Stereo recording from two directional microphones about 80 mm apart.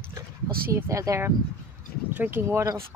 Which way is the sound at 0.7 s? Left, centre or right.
Right.